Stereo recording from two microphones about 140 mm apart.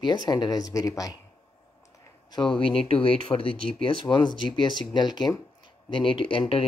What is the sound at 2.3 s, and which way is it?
Speech, 35° left (ahead or behind).